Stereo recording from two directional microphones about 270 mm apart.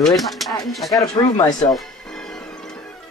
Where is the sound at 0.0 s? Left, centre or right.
Centre.